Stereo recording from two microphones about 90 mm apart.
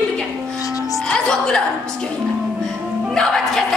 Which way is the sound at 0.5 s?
40° left (ahead or behind).